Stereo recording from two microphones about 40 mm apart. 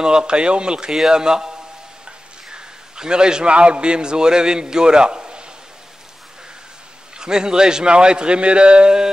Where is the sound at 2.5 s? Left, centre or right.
Right.